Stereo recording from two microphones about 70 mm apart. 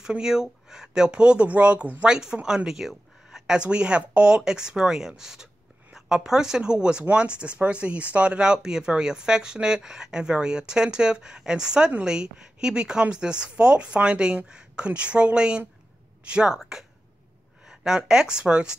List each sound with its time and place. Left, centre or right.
0.0 s speech: centre